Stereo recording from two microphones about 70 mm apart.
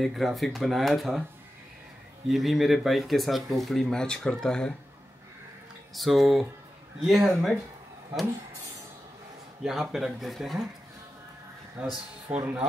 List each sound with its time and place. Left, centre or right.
0.0 s speech: centre
2.2 s speech: centre
5.9 s speech: centre
9.6 s speech: centre
11.8 s speech: centre